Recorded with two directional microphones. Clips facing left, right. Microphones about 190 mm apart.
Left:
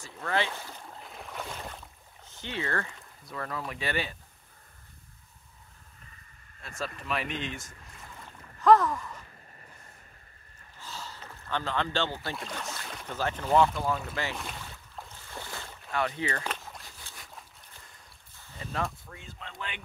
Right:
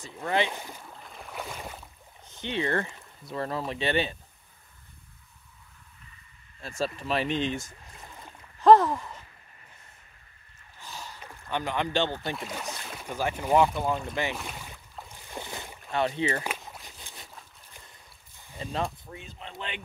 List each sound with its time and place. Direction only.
0.0 s speech: 20° right (ahead or behind)
1.0 s boat: centre (ahead or behind)
2.3 s speech: 20° right (ahead or behind)
7.0 s speech: 30° right (ahead or behind)
8.6 s a sound: 30° right (ahead or behind)
10.8 s a sound: 15° right (ahead or behind)
12.4 s speech: 10° right (ahead or behind)
14.3 s speech: 5° right (ahead or behind)
15.0 s boat: 15° right (ahead or behind)
16.4 s a sound: 10° right (ahead or behind)
18.6 s speech: 25° right (ahead or behind)